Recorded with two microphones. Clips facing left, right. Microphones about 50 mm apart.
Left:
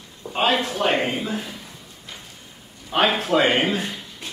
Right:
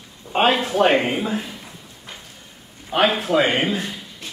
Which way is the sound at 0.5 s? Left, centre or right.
Right.